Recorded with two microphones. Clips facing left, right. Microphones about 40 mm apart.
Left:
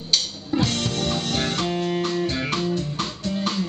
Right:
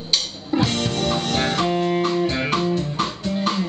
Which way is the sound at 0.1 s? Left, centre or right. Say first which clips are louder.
Right 1 dB; centre.